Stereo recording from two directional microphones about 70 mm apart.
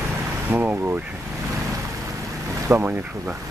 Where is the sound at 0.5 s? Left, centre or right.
Right.